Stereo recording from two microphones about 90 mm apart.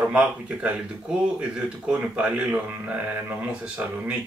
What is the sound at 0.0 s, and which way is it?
Speech, 15° right (ahead or behind).